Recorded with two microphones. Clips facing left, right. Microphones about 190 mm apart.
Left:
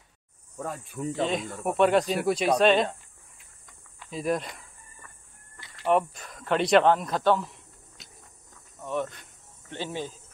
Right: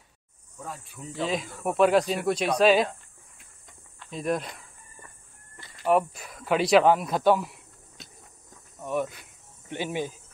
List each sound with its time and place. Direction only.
0.8 s speech: 40° left (ahead or behind)
1.1 s speech: centre (ahead or behind)
4.1 s speech: centre (ahead or behind)
5.9 s speech: 5° right (ahead or behind)
8.7 s speech: 10° right (ahead or behind)
9.7 s speech: 15° right (ahead or behind)